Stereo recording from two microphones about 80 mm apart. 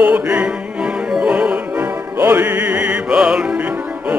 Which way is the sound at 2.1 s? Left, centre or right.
Right.